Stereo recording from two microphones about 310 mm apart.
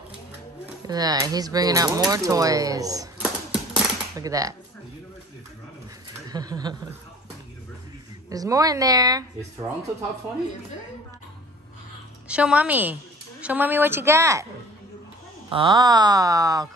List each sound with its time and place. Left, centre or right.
0.8 s speech: centre
3.7 s a sound: centre
6.2 s a sound: centre
8.3 s speech: centre
12.3 s a woman's voice: centre
15.5 s speech: centre